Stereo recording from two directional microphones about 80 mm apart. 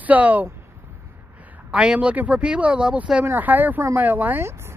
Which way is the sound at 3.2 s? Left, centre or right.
Right.